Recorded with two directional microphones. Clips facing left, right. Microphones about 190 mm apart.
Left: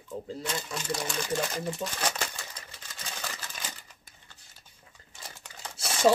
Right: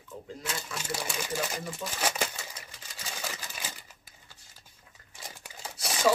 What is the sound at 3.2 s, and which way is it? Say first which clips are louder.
Typewriter: right 1 dB; 10° right (ahead or behind).